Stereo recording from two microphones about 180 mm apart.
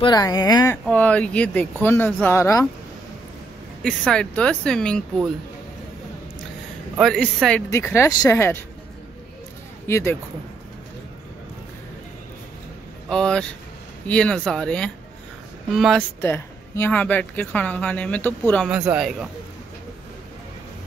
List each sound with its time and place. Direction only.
0.0 s speech: 20° left (ahead or behind)
0.8 s speech: 5° left (ahead or behind)
3.8 s speech: 5° left (ahead or behind)
7.0 s speech: centre (ahead or behind)
9.8 s a man's voice: 15° left (ahead or behind)
13.1 s speech: 5° left (ahead or behind)
16.2 s speech: 15° left (ahead or behind)
18.7 s speech: 5° right (ahead or behind)